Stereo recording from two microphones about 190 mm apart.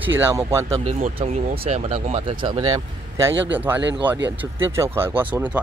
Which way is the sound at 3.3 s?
70° right (ahead or behind).